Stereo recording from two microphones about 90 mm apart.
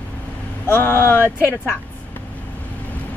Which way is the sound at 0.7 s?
25° left (ahead or behind).